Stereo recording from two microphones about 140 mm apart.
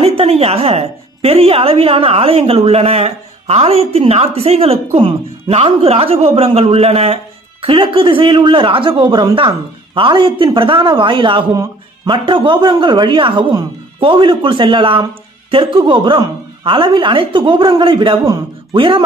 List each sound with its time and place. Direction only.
0.0 s a woman's voice: 45° right (ahead or behind)